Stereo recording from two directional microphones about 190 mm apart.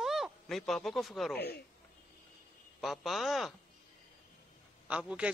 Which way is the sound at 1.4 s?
60° left (ahead or behind).